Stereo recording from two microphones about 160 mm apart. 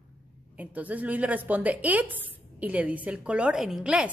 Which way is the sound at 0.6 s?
10° right (ahead or behind).